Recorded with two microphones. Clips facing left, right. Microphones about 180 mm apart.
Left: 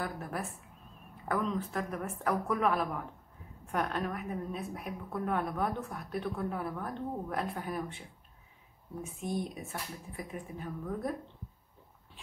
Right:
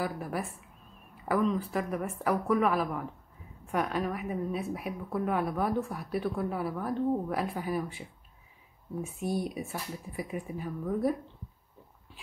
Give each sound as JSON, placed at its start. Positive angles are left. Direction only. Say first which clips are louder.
{"t": 0.0, "sound": "a woman's voice", "louder": "right 4 dB", "side_deg": -5}
{"t": 9.2, "sound": "speech", "louder": "right 3 dB", "side_deg": -35}
{"t": 9.7, "sound": "a woman's voice", "louder": "right 3 dB", "side_deg": 0}